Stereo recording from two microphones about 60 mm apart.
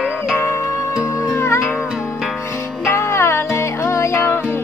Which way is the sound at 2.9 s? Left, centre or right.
Left.